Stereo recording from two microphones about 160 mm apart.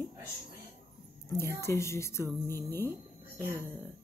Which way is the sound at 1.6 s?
20° left (ahead or behind).